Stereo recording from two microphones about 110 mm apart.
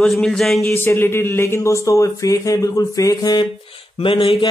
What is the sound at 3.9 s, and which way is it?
Mantra, 55° left (ahead or behind).